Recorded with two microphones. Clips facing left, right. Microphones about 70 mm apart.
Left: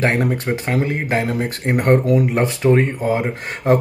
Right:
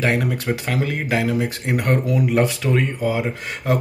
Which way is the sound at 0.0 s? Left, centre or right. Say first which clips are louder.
Left 2 dB; left.